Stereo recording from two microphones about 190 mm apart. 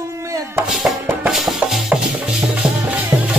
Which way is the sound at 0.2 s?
15° right (ahead or behind).